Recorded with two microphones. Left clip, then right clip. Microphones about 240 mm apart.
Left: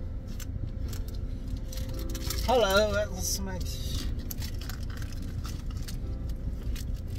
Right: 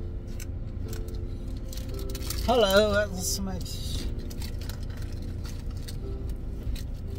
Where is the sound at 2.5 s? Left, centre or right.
Right.